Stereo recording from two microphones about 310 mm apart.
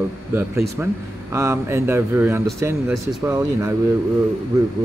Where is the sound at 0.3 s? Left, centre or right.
Centre.